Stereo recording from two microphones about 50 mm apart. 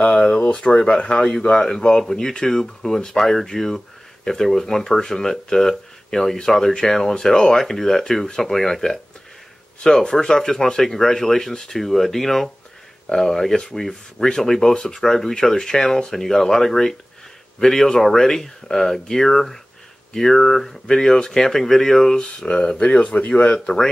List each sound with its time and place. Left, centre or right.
0.1 s speech: centre
22.2 s speech: centre